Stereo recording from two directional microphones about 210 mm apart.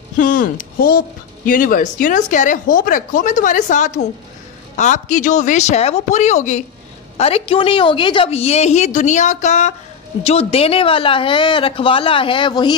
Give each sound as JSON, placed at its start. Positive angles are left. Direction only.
{"t": 0.2, "sound": "a woman's voice", "side_deg": 40}